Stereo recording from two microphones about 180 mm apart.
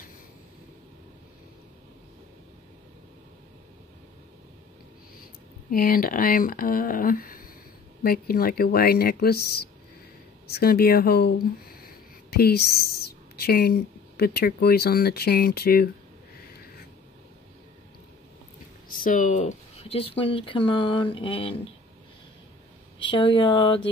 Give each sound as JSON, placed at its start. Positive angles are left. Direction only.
{"t": 5.7, "sound": "speech", "side_deg": 55}
{"t": 19.0, "sound": "speech", "side_deg": 45}
{"t": 23.0, "sound": "speech", "side_deg": 25}